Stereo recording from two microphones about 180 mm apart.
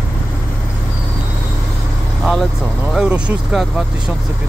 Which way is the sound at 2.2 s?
Centre (ahead or behind).